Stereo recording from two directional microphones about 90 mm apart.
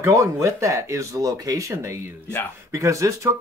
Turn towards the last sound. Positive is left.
turn(degrees=-35)  # may be behind; listen again after turning